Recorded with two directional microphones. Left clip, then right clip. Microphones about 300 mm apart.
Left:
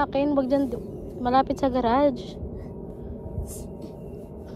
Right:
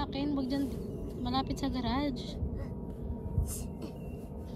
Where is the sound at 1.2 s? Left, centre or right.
Centre.